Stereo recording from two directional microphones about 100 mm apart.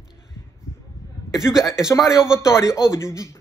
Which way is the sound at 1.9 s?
35° left (ahead or behind).